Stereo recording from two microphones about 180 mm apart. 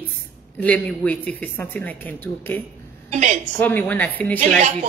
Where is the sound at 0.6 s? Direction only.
5° left (ahead or behind).